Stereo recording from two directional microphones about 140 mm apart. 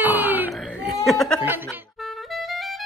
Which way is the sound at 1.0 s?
Centre (ahead or behind).